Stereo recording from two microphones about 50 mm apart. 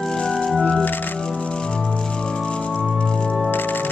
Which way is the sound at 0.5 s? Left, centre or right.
Left.